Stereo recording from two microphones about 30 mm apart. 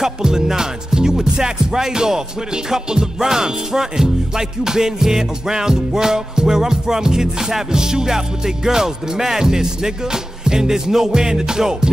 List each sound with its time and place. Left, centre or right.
0.0 s music: centre
8.6 s speech: centre
9.4 s music: right